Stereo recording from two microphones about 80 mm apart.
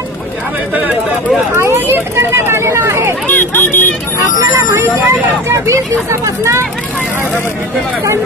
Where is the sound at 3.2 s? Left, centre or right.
Left.